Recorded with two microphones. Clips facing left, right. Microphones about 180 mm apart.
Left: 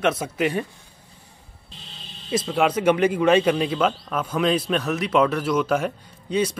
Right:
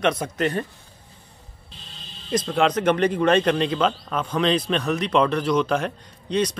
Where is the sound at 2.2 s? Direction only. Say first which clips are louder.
Even; 5° left (ahead or behind).